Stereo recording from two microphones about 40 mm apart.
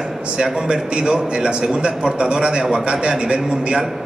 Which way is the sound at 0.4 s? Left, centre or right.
Centre.